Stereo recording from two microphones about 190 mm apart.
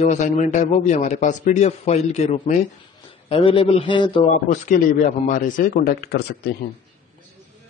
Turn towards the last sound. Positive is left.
turn(degrees=55)  # may be behind; listen again after turning